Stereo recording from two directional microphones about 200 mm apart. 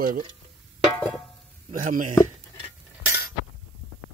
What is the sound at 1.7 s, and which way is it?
Speech, 40° right (ahead or behind).